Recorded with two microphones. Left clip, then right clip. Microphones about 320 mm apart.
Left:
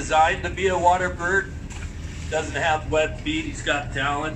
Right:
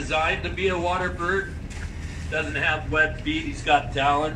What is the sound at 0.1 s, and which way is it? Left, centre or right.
A man's voice, left.